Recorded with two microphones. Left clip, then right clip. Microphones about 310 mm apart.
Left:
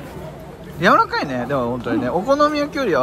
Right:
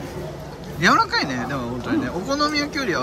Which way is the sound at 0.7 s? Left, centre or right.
Centre.